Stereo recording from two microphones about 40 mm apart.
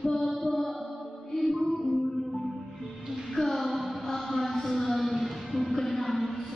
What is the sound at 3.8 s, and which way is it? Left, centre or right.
Mantra, centre.